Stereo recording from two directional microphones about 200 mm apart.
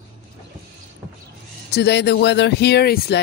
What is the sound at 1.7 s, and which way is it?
Speech, 55° left (ahead or behind).